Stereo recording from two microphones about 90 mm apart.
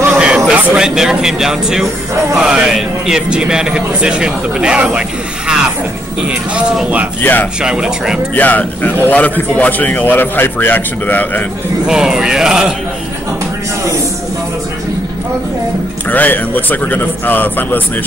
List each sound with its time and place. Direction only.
0.2 s a man's voice: 10° right (ahead or behind)
6.5 s a man's voice: 15° right (ahead or behind)
7.2 s a man's voice: 20° left (ahead or behind)
7.6 s a man's voice: 10° right (ahead or behind)
8.4 s a man's voice: 20° left (ahead or behind)
11.8 s a man's voice: 5° right (ahead or behind)
16.1 s a man's voice: 20° left (ahead or behind)